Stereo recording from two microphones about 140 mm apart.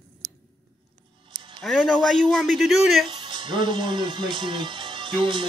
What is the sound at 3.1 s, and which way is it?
Speech, 35° right (ahead or behind).